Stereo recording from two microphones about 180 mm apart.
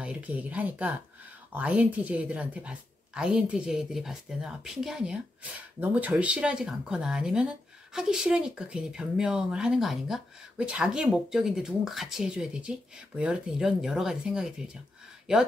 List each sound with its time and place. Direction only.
0.0 s speech: 5° right (ahead or behind)